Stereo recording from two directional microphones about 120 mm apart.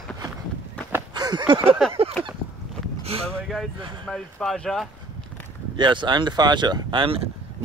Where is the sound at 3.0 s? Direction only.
55° right (ahead or behind).